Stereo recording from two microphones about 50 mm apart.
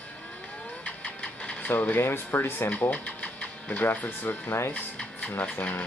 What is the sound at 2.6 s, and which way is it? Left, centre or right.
Mechanisms, left.